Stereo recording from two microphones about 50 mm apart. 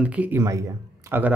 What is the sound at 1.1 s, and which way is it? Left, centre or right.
Speech, right.